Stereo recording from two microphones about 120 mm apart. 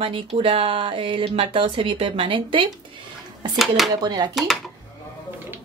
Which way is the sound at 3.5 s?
Centre (ahead or behind).